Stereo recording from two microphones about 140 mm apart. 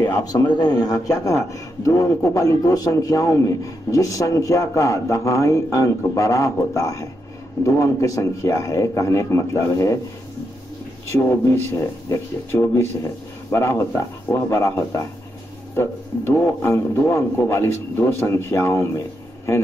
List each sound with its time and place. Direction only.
0.0 s a man's voice: 25° left (ahead or behind)
11.1 s a man's voice: 20° left (ahead or behind)